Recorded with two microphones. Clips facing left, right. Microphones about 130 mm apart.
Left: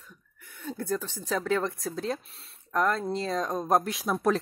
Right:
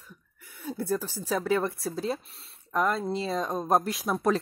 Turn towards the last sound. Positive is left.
turn(degrees=0)  # may be behind; listen again after turning